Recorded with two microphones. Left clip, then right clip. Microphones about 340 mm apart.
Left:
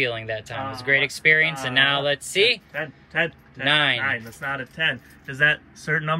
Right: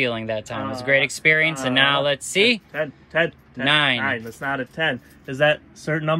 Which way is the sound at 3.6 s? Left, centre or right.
Centre.